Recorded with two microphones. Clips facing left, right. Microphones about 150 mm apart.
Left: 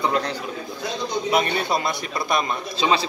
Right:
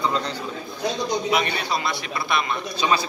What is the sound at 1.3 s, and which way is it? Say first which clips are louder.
A man's voice: left 2 dB; 50° left (ahead or behind).